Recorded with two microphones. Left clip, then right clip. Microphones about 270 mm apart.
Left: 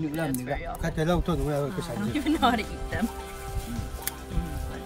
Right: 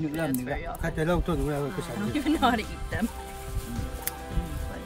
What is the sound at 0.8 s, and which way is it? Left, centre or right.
Speech, centre.